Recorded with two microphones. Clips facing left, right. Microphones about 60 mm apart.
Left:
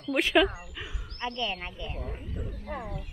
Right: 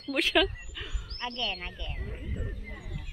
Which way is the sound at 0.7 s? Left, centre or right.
Centre.